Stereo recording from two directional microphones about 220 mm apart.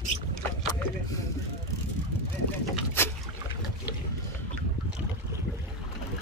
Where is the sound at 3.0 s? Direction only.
10° left (ahead or behind).